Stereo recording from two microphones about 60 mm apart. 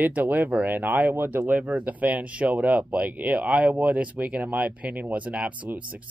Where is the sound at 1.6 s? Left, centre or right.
Right.